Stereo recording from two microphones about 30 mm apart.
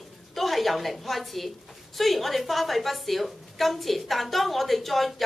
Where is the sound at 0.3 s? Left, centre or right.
Centre.